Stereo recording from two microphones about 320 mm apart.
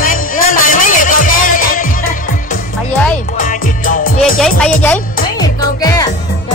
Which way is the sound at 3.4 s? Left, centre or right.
Left.